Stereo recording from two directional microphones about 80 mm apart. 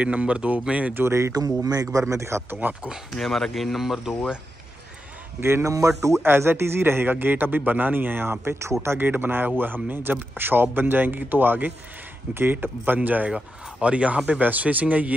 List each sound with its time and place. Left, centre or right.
0.0 s speech: centre
1.0 s speech: right
1.3 s a man's voice: right
2.8 s speech: centre
3.3 s speech: centre
5.4 s a man's voice: right; by 15.1 s centre